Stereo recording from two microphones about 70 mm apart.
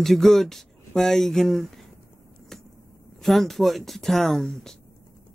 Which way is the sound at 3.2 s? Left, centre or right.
Centre.